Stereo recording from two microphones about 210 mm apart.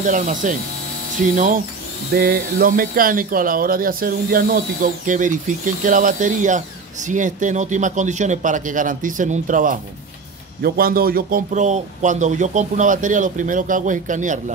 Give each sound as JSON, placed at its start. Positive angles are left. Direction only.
{"t": 0.0, "sound": "a man's voice", "side_deg": -35}